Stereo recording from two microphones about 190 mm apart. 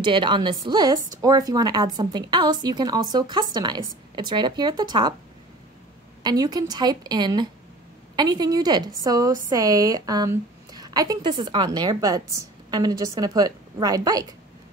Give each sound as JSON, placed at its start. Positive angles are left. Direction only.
{"t": 0.0, "sound": "a woman's voice", "side_deg": -25}
{"t": 6.2, "sound": "a woman's voice", "side_deg": -20}